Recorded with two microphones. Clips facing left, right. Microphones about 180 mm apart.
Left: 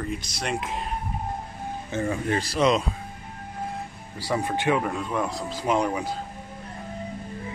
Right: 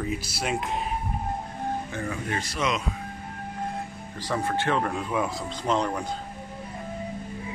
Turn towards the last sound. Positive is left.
turn(degrees=10)  # may be behind; listen again after turning